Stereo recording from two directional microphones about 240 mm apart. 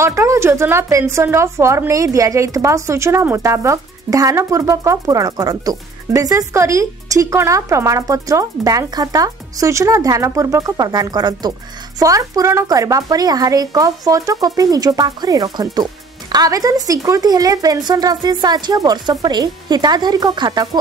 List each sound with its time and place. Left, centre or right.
0.0 s a woman's voice: centre